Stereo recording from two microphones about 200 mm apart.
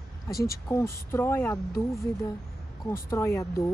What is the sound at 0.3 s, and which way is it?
Speech, 50° left (ahead or behind).